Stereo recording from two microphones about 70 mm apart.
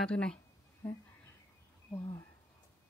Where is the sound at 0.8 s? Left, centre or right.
Left.